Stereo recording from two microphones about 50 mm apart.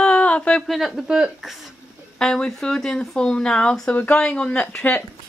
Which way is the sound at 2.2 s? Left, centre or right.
Centre.